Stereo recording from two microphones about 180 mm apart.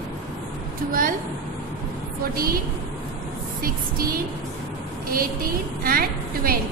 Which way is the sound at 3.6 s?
55° right (ahead or behind).